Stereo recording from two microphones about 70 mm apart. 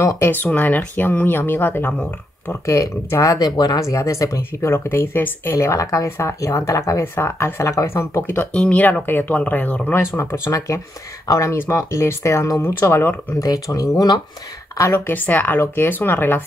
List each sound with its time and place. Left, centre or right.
0.0 s speech: left
0.3 s speech: left
1.9 s speech: left
2.6 s speech: left
3.3 s speech: left
3.8 s speech: left
4.6 s speech: left
8.5 s speech: centre
9.9 s speech: left
12.7 s speech: left
13.4 s speech: left
15.0 s speech: left